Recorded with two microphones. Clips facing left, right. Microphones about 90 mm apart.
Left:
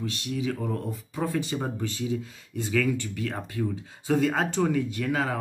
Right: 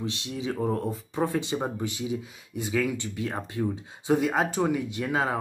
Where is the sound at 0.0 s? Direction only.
20° right (ahead or behind).